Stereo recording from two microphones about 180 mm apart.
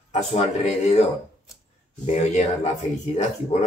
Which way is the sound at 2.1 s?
40° left (ahead or behind).